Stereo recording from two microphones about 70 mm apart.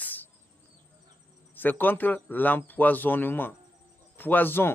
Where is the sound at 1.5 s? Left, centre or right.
Left.